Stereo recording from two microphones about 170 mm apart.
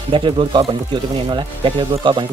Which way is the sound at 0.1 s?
30° right (ahead or behind).